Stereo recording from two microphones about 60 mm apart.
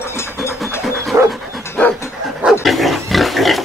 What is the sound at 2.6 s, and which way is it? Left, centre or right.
Pig, centre.